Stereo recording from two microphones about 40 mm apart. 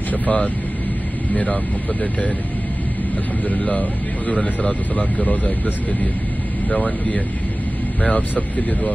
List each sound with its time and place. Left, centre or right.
0.1 s speech: left
3.4 s speech: left
6.7 s speech: left